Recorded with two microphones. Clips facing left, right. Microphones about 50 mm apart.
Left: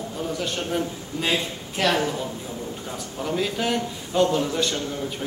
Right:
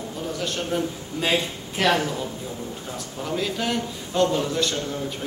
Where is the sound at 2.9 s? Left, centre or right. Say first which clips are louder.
Left 2 dB; centre.